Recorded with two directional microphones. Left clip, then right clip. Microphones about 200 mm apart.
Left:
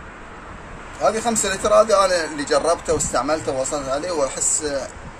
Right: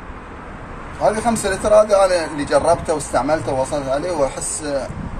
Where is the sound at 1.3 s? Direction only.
30° left (ahead or behind).